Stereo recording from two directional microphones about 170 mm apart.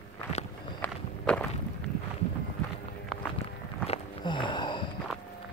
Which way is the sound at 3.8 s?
30° left (ahead or behind).